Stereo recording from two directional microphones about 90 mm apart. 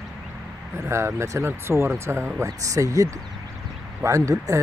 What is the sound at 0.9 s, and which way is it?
Speech, 30° right (ahead or behind).